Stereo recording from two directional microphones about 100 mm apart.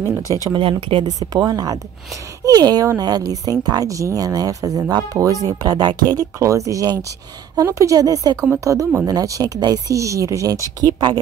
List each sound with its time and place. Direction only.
0.0 s speech: 35° right (ahead or behind)
0.5 s speech: 65° right (ahead or behind)
1.3 s speech: 40° right (ahead or behind)